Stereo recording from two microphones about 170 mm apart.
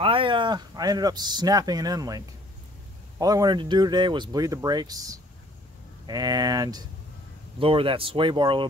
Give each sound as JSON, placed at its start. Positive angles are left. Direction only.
{"t": 0.0, "sound": "speech", "side_deg": -30}